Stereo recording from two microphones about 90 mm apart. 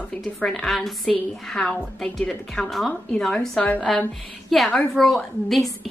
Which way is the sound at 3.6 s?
15° left (ahead or behind).